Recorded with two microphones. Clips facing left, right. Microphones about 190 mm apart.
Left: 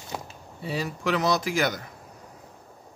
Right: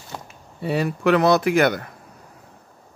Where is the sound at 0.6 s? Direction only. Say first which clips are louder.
Right 8 dB; 60° right (ahead or behind).